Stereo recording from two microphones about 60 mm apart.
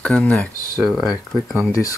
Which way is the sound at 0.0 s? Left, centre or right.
Left.